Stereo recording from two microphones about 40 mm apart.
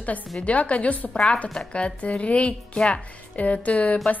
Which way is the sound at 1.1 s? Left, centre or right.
Left.